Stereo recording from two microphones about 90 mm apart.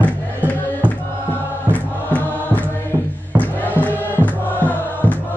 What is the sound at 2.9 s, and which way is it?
Music, 65° right (ahead or behind).